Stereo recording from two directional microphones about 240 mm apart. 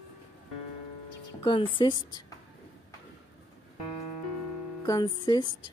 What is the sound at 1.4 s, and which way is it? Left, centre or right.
Speech, left.